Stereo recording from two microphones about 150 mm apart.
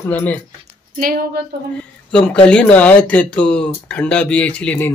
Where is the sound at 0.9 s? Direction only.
75° right (ahead or behind).